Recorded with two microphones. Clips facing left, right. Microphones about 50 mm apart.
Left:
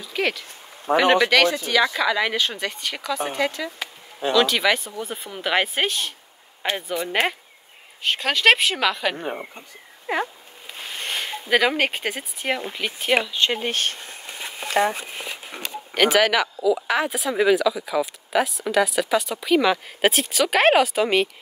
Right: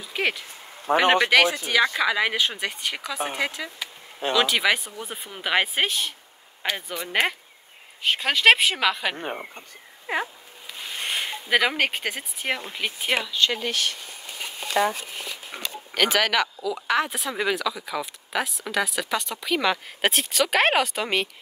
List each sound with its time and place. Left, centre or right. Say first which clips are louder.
0.0 s speech: left 1 dB; centre
0.9 s speech: left 1 dB; right
2.0 s speech: left 1 dB; centre
11.0 s speech: even; centre
13.3 s speech: left 1 dB; left
15.9 s speech: left 4 dB; centre